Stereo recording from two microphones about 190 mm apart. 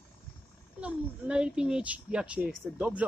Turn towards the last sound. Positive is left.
turn(degrees=-5)  # may be behind; listen again after turning